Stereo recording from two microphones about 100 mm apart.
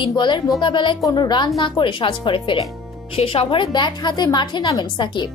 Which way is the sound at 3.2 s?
65° left (ahead or behind).